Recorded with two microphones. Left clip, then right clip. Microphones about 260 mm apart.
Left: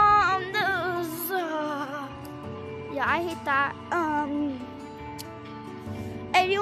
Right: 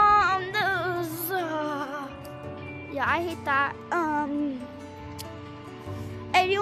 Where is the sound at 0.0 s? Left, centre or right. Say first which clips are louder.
Even; centre.